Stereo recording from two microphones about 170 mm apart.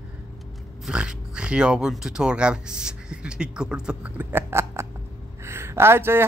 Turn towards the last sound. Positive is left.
turn(degrees=-15)  # may be behind; listen again after turning